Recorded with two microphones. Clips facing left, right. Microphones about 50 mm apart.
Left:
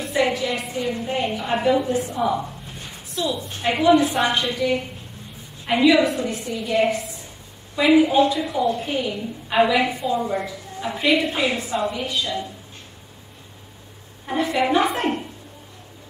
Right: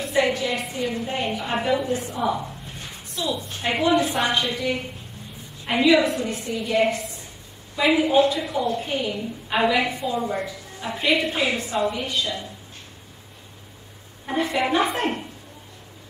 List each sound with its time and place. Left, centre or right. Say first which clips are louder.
0.3 s a woman's voice: left 1 dB; centre
3.6 s a woman's voice: left 4 dB; centre
14.2 s a woman's voice: left 2 dB; centre